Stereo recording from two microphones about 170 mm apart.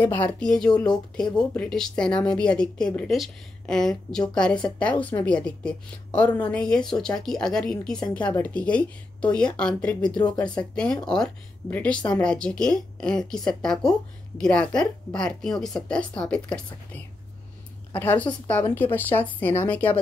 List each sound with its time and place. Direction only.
0.0 s speech: 10° left (ahead or behind)
10.1 s speech: 25° left (ahead or behind)
10.6 s speech: 5° left (ahead or behind)